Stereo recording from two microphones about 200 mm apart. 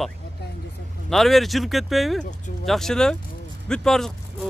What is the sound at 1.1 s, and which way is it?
Speech, centre (ahead or behind).